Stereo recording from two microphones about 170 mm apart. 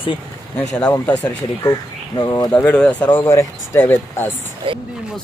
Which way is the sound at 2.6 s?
5° left (ahead or behind).